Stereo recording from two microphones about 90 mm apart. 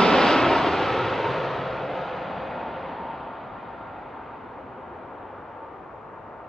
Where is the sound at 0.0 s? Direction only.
5° left (ahead or behind).